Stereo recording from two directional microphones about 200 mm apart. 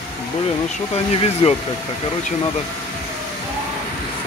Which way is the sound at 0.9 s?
30° left (ahead or behind).